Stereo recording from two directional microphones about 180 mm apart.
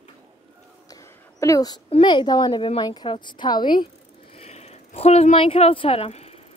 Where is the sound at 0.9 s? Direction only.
15° left (ahead or behind).